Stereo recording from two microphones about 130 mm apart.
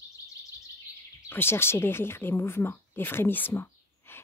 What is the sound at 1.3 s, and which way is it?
Speech, 15° left (ahead or behind).